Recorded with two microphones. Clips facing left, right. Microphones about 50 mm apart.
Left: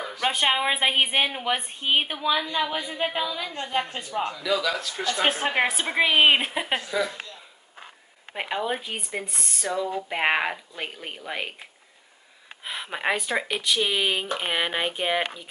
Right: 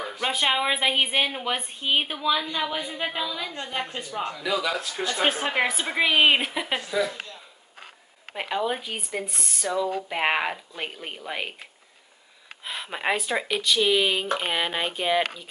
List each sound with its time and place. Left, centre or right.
0.2 s a woman's voice: centre
4.3 s a man's voice: right
5.4 s a woman's voice: centre
8.3 s a woman's voice: centre
12.6 s speech: centre
13.6 s a woman's voice: centre